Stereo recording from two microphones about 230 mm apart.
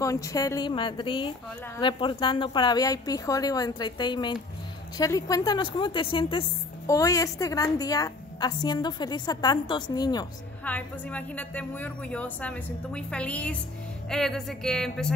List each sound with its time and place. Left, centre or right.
0.0 s a woman's voice: centre
10.6 s a woman's voice: centre